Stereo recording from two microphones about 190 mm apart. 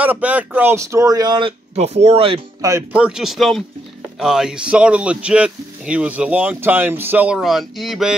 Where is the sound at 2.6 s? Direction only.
10° right (ahead or behind).